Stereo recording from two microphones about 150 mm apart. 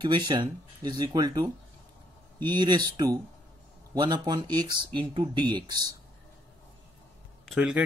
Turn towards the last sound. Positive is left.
turn(degrees=-5)  # may be behind; listen again after turning